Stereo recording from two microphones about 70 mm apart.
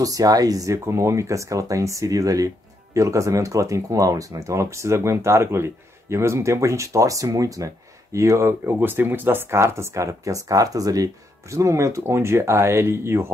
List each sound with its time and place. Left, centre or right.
0.0 s speech: right